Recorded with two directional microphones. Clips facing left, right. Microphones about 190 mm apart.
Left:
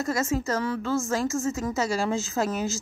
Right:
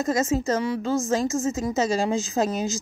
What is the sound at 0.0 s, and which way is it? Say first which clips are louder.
A woman's voice: right 3 dB; 20° right (ahead or behind).